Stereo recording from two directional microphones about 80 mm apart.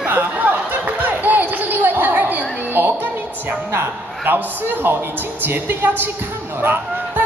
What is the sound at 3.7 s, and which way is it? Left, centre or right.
A man's voice, right.